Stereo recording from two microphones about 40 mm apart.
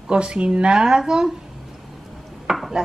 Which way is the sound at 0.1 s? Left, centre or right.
Right.